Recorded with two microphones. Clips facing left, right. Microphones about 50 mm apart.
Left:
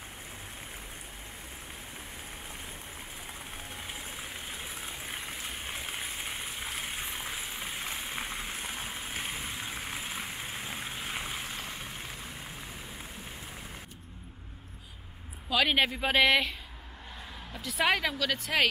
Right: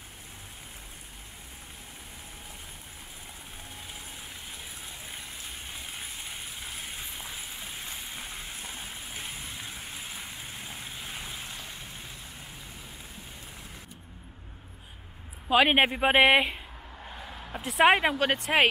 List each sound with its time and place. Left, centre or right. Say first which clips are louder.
7.0 s a sound: left 3 dB; left
7.9 s vehicle: left 4 dB; left
8.5 s vehicle: left 3 dB; centre
15.4 s speech: right 5 dB; right
17.5 s a sound: right 5 dB; right
17.8 s speech: right 6 dB; right